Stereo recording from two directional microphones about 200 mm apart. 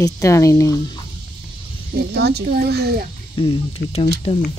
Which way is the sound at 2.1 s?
55° right (ahead or behind).